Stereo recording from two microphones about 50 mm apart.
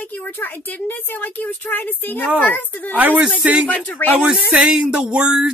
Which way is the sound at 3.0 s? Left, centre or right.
Right.